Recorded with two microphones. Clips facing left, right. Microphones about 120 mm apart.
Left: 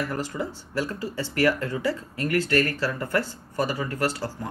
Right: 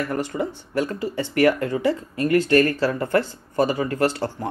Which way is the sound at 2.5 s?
30° right (ahead or behind).